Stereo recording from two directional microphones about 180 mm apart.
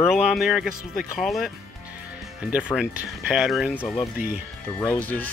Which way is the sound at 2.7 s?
Centre (ahead or behind).